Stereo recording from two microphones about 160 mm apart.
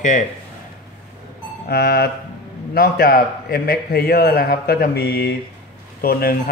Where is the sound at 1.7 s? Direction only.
85° left.